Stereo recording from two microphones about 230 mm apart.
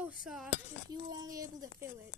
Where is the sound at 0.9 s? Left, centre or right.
Centre.